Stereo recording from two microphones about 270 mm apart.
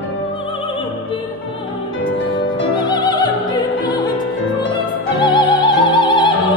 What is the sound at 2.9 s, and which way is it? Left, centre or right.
Music, centre.